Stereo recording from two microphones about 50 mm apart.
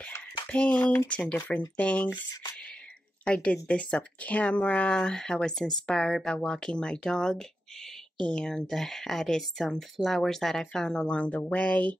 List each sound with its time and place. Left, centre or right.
0.5 s speech: left